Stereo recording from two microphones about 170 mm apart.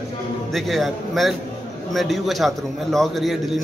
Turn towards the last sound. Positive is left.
turn(degrees=0)  # may be behind; listen again after turning